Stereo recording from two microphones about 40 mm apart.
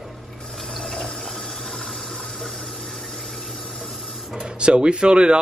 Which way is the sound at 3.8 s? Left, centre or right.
Centre.